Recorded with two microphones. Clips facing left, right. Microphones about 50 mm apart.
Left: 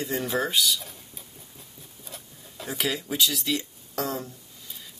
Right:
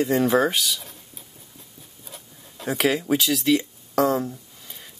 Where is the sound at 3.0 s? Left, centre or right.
Right.